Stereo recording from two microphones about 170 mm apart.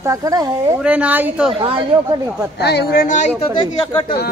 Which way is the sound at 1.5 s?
25° right (ahead or behind).